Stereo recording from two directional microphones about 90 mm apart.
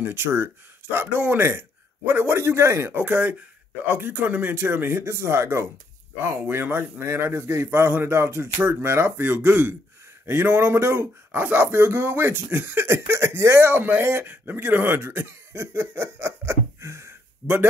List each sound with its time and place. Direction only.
0.0 s speech: 25° right (ahead or behind)